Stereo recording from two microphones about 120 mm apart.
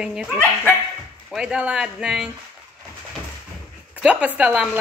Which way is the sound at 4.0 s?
10° right (ahead or behind).